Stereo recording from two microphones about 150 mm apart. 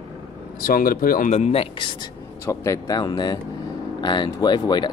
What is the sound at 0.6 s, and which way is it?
Speech, 70° left (ahead or behind).